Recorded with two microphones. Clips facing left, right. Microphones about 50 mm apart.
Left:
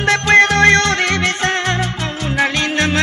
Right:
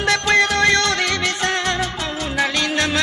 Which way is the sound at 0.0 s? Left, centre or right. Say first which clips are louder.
Left 5 dB; left.